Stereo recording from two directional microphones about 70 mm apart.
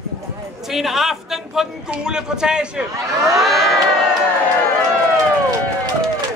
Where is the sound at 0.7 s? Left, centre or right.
Centre.